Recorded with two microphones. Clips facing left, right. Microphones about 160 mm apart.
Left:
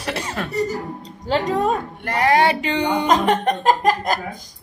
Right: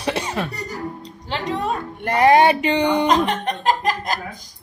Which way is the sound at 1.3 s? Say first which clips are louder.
Left 5 dB; 40° left (ahead or behind).